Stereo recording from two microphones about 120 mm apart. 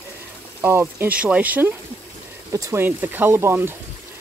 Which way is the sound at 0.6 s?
20° right (ahead or behind).